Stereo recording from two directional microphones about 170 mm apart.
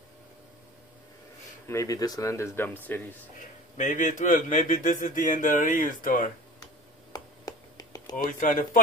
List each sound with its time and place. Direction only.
1.7 s speech: 20° left (ahead or behind)
3.7 s speech: 45° left (ahead or behind)
6.6 s a sound: 20° left (ahead or behind)
8.2 s speech: 50° left (ahead or behind)